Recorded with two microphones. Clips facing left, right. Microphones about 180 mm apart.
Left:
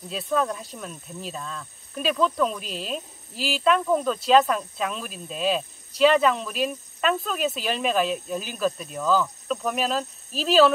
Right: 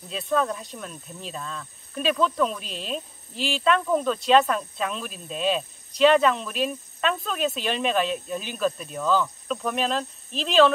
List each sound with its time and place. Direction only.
0.1 s speech: centre (ahead or behind)